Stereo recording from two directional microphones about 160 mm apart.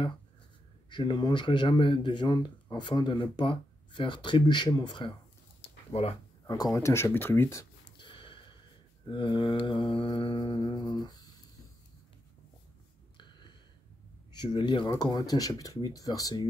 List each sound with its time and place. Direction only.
0.8 s speech: 30° left (ahead or behind)
5.9 s mantra: 40° left (ahead or behind)
6.4 s speech: 20° left (ahead or behind)
8.0 s snort: 30° left (ahead or behind)
9.0 s mantra: 30° left (ahead or behind)
13.2 s a sound: 30° left (ahead or behind)
14.4 s speech: 30° left (ahead or behind)